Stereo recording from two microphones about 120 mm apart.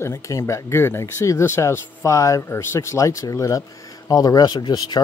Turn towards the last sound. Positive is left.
turn(degrees=40)  # may be behind; listen again after turning